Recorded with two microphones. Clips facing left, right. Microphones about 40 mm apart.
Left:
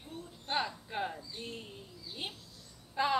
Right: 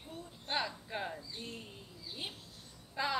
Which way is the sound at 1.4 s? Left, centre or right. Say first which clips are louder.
Left 2 dB; left.